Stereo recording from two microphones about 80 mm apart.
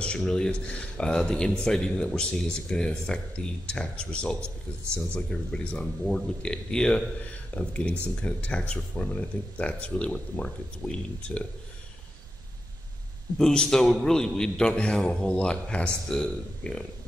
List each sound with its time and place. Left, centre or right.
0.0 s a man's voice: centre
13.4 s a man's voice: centre